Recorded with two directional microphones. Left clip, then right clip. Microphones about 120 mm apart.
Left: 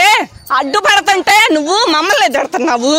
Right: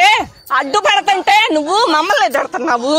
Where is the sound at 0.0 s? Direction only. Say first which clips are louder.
Left 1 dB; 90° left.